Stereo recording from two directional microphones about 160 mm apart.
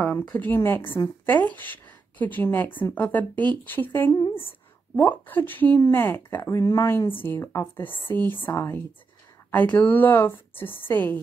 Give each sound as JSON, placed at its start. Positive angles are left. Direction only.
{"t": 0.4, "sound": "speech", "side_deg": 15}
{"t": 4.1, "sound": "speech", "side_deg": 30}
{"t": 4.9, "sound": "speech", "side_deg": 10}